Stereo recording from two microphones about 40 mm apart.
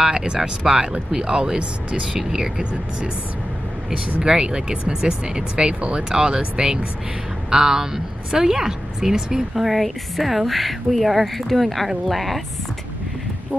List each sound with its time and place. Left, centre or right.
0.0 s a woman's voice: centre
2.1 s a woman's voice: centre
4.2 s speech: right
7.5 s a woman's voice: centre
9.6 s speech: centre